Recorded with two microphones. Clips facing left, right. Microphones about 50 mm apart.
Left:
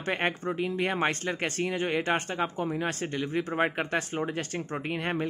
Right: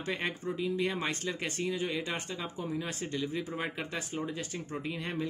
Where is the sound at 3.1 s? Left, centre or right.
Left.